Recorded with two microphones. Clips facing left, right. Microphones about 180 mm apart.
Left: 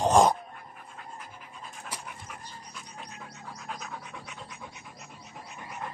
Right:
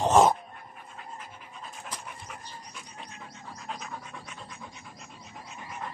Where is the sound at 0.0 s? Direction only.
5° right (ahead or behind).